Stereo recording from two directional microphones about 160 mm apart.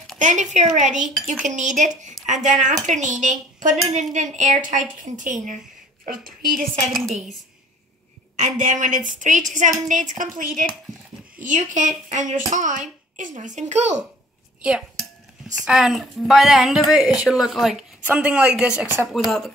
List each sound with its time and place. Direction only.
0.2 s speech: 50° right (ahead or behind)
6.9 s a woman's voice: centre (ahead or behind)
8.4 s speech: 50° right (ahead or behind)
14.6 s dishes: 5° right (ahead or behind)
15.6 s a woman's voice: centre (ahead or behind)